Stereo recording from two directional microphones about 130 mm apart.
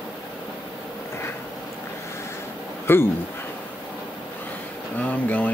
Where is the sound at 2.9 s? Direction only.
20° left (ahead or behind).